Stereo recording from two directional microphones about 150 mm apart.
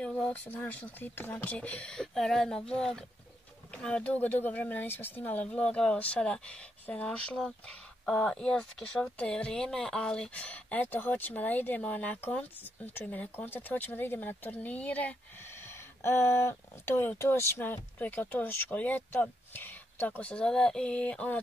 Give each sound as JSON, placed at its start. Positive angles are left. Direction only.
{"t": 0.0, "sound": "speech", "side_deg": 10}